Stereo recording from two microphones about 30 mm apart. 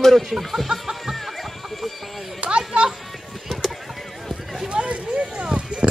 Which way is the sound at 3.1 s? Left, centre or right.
Centre.